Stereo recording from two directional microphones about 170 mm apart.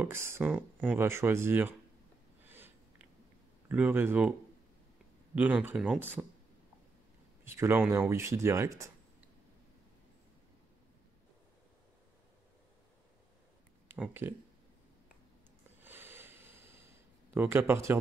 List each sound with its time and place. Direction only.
0.0 s speech: 15° right (ahead or behind)
2.4 s a sound: 10° right (ahead or behind)
3.6 s speech: 10° right (ahead or behind)
5.3 s speech: 10° right (ahead or behind)
7.4 s speech: 15° right (ahead or behind)
13.8 s speech: 10° right (ahead or behind)
15.8 s a sound: 10° right (ahead or behind)